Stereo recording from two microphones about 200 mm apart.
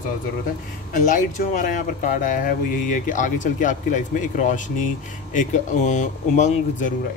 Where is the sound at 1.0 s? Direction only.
40° left (ahead or behind).